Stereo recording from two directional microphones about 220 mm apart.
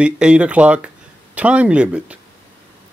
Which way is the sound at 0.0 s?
5° right (ahead or behind).